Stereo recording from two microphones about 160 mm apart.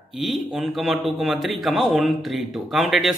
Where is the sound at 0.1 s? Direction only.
Centre (ahead or behind).